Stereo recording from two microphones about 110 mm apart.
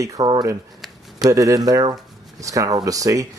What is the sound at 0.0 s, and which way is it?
Speech, 30° right (ahead or behind).